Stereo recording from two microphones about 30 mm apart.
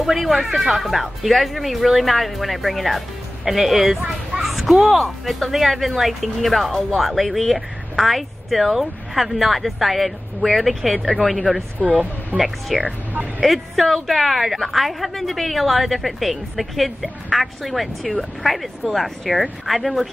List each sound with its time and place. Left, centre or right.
0.0 s speech: centre
1.0 s speech: centre
11.8 s speech: right
12.4 s speech: centre